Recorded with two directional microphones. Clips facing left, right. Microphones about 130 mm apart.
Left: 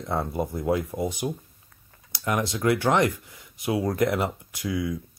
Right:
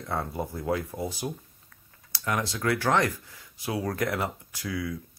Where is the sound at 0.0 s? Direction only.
20° left (ahead or behind).